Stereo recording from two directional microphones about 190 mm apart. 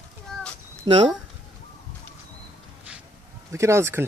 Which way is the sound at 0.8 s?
25° right (ahead or behind).